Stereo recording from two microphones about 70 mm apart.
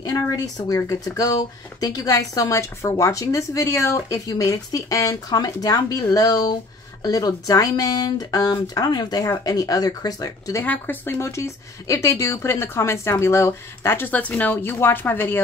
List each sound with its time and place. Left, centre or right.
0.0 s speech: left
4.3 s speech: left
10.6 s speech: left
11.1 s speech: left
14.1 s speech: left
14.5 s speech: left